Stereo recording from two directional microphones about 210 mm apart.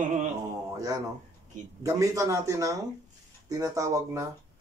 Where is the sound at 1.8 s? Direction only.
15° right (ahead or behind).